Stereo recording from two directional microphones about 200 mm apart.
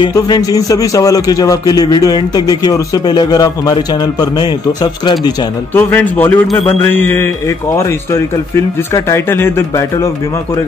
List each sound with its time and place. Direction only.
0.0 s a man's voice: 20° left (ahead or behind)
5.8 s speech: 10° left (ahead or behind)